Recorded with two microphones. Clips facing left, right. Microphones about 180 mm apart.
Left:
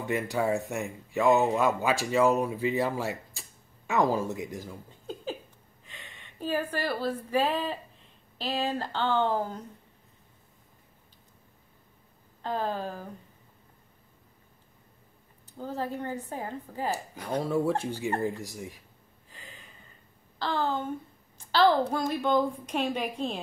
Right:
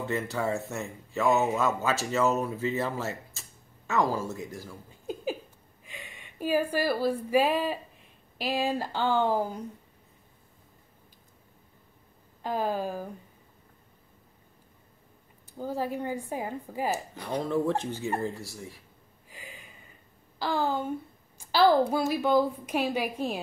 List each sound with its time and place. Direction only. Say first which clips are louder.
0.0 s speech: left 2 dB; 15° left (ahead or behind)
5.0 s a sound: right 4 dB; 10° right (ahead or behind)
5.9 s a woman's voice: right 4 dB; 10° right (ahead or behind)
12.4 s a woman's voice: right 2 dB; 10° right (ahead or behind)
15.4 s a woman's voice: right 2 dB; 10° right (ahead or behind)
16.9 s speech: even; 10° left (ahead or behind)
19.3 s a sound: right 3 dB; 10° right (ahead or behind)
20.3 s a woman's voice: right 1 dB; 10° right (ahead or behind)